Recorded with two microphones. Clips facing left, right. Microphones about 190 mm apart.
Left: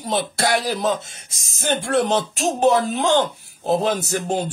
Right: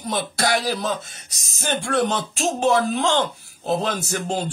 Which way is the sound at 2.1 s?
20° left (ahead or behind).